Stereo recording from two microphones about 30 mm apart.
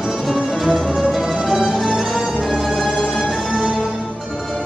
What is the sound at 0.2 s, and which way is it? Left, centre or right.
Music, centre.